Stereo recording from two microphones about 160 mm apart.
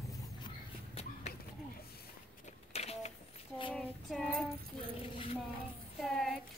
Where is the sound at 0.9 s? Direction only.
40° left (ahead or behind).